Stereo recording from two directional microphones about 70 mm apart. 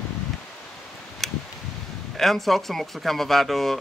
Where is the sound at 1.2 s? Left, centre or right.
Centre.